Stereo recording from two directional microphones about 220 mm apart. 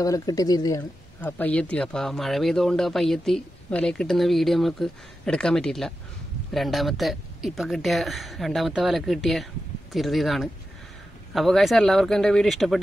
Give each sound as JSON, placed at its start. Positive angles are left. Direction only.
{"t": 0.0, "sound": "speech", "side_deg": 15}
{"t": 1.2, "sound": "speech", "side_deg": 5}